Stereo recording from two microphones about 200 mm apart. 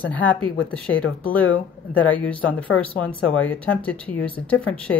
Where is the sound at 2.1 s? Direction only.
5° left (ahead or behind).